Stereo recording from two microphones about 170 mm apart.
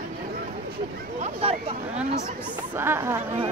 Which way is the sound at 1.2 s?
35° right (ahead or behind).